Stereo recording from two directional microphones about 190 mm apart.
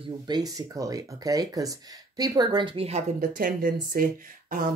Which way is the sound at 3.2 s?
50° right (ahead or behind).